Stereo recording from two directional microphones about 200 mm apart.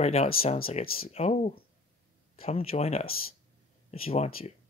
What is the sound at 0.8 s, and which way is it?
Speech, 45° left (ahead or behind).